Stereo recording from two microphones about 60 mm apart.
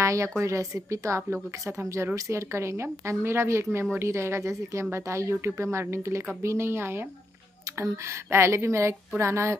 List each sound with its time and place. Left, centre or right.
0.0 s speech: right
7.8 s speech: right